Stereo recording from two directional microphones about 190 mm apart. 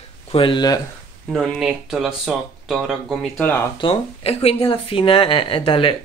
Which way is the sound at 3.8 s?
30° left (ahead or behind).